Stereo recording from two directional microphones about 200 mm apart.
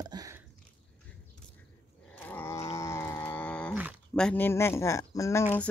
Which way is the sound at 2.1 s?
10° left (ahead or behind).